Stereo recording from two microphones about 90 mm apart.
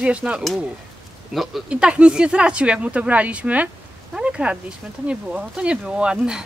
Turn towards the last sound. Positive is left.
turn(degrees=-10)  # may be behind; listen again after turning